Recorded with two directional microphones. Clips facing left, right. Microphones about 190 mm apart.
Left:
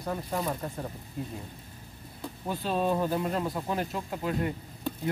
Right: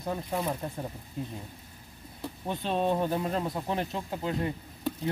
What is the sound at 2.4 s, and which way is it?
Speech, 20° right (ahead or behind).